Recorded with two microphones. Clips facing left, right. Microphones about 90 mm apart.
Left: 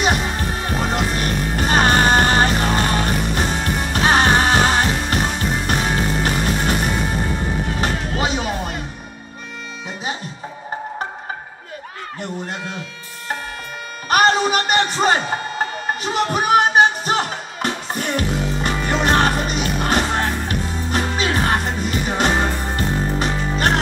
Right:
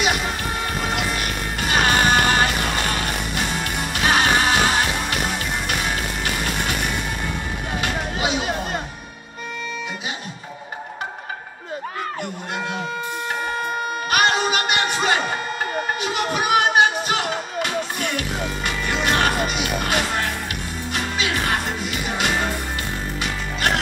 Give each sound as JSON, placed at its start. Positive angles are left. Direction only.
{"t": 0.0, "sound": "music", "side_deg": 40}
{"t": 14.1, "sound": "music", "side_deg": 40}